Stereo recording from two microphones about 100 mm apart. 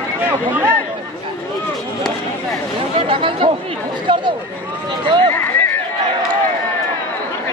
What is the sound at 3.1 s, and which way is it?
Chatter, 60° right (ahead or behind).